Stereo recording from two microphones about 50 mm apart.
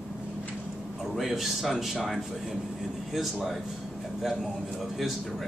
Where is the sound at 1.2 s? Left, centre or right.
Centre.